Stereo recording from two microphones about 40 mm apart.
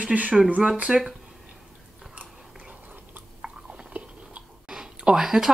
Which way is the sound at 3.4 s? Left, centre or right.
Right.